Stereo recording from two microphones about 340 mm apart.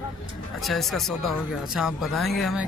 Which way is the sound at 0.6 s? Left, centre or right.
Centre.